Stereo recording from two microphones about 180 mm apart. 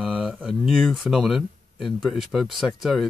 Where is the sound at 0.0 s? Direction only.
5° right (ahead or behind).